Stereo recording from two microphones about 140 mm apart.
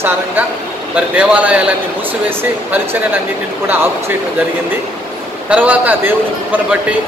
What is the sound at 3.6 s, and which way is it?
Speech, 15° right (ahead or behind).